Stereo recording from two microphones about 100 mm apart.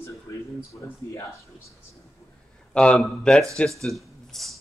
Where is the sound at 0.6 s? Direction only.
25° left (ahead or behind).